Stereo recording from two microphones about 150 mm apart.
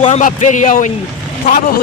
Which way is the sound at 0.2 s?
55° left (ahead or behind).